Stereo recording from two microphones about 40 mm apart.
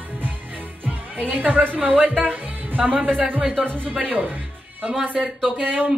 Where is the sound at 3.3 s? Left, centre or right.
Right.